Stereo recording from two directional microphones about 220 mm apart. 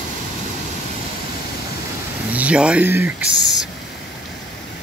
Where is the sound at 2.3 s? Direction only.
5° right (ahead or behind).